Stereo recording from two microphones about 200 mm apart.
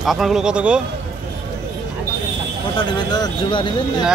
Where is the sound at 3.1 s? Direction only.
20° left (ahead or behind).